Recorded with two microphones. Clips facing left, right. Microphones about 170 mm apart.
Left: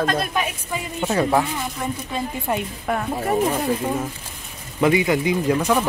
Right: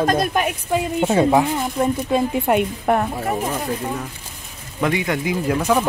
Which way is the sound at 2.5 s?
60° right (ahead or behind).